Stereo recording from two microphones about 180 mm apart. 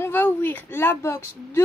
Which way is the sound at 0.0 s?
10° left (ahead or behind).